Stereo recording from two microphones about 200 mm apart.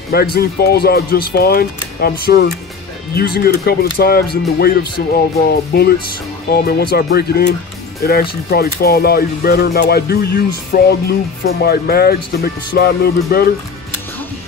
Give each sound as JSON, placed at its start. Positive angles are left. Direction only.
{"t": 0.1, "sound": "speech", "side_deg": 50}